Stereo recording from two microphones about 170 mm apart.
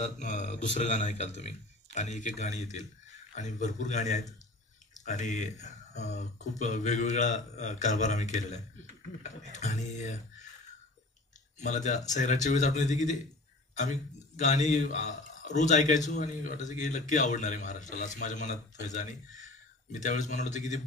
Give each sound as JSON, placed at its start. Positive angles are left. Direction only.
{"t": 0.0, "sound": "a man's voice", "side_deg": 45}
{"t": 11.6, "sound": "a man's voice", "side_deg": 45}